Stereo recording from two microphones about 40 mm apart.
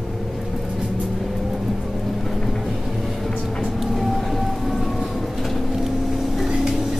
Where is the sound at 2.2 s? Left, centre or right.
Centre.